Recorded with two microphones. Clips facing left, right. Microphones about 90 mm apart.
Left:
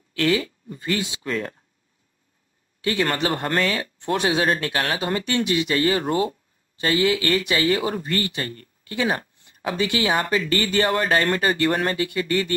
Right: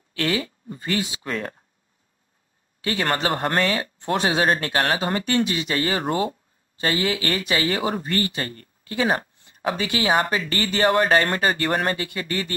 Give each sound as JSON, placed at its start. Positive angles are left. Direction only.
{"t": 0.1, "sound": "speech", "side_deg": -25}
{"t": 2.8, "sound": "speech", "side_deg": -30}
{"t": 6.0, "sound": "speech", "side_deg": 0}
{"t": 6.8, "sound": "speech", "side_deg": -25}